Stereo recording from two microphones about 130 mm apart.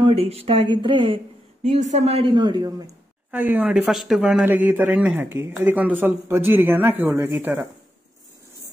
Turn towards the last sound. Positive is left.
turn(degrees=-15)  # may be behind; listen again after turning